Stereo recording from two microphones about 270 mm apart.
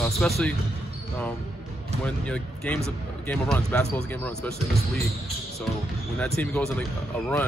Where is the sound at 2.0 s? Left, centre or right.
Centre.